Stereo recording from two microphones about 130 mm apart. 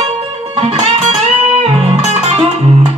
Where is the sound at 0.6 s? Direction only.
55° right (ahead or behind).